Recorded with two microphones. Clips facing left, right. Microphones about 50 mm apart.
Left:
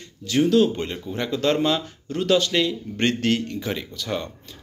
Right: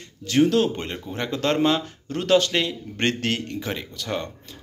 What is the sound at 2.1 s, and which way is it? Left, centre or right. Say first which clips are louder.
Speech: right 1 dB; right.